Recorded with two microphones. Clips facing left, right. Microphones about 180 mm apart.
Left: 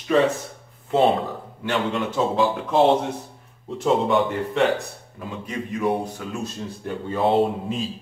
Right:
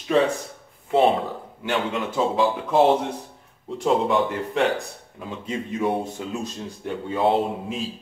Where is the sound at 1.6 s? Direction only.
Centre (ahead or behind).